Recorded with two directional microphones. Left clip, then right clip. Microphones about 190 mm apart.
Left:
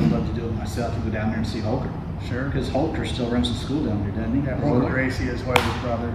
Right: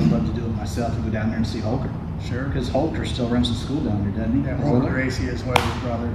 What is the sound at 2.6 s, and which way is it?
A man's voice, 10° right (ahead or behind).